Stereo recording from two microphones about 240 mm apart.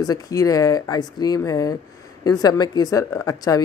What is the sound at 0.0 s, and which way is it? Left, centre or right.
Speech, centre.